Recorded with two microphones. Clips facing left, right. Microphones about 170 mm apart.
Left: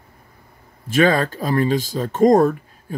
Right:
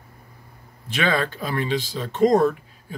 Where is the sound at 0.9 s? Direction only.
45° left (ahead or behind).